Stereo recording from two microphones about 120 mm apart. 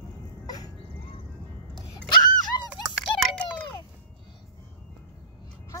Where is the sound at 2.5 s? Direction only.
30° left (ahead or behind).